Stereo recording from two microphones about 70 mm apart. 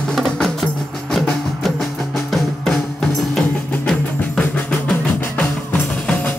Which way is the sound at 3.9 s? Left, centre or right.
Centre.